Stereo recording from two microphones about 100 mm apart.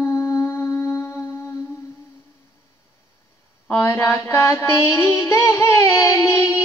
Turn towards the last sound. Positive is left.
turn(degrees=30)  # may be behind; listen again after turning